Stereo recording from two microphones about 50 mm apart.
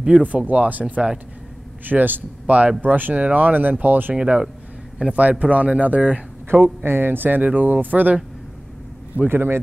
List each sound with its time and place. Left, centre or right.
0.2 s speech: right
4.1 s a man's voice: centre
6.5 s speech: right
9.3 s speech: right